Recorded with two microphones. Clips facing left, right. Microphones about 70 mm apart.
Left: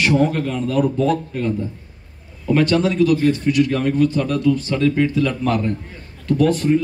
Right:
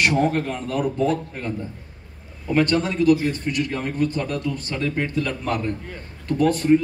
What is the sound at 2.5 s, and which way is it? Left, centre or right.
Speech, right.